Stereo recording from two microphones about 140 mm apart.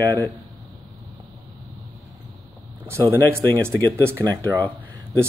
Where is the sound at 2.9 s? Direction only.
20° right (ahead or behind).